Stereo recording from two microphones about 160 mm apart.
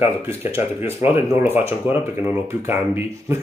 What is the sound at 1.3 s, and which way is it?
Speech, 15° right (ahead or behind).